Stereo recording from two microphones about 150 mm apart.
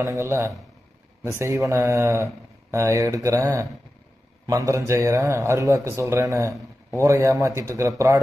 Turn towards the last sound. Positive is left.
turn(degrees=-20)  # may be behind; listen again after turning